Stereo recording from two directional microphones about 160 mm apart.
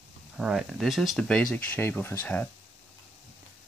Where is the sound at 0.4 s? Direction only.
5° right (ahead or behind).